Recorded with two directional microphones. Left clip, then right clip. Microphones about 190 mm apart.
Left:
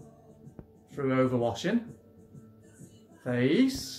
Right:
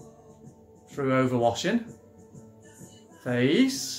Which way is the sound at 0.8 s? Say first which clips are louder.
Right 2 dB; centre (ahead or behind).